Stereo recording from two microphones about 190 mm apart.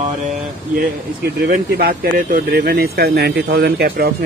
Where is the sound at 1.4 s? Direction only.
55° right (ahead or behind).